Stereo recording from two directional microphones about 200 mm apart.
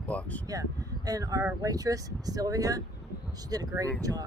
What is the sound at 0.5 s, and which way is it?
Speech, 20° right (ahead or behind).